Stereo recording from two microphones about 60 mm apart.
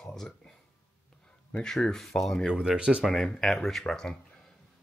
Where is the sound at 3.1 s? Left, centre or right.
Centre.